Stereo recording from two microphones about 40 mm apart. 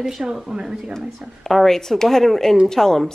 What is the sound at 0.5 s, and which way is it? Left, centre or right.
Speech, centre.